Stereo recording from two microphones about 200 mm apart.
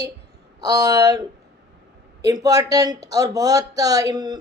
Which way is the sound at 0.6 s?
20° right (ahead or behind).